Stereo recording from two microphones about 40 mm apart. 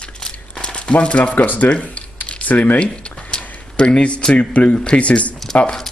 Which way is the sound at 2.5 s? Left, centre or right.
Left.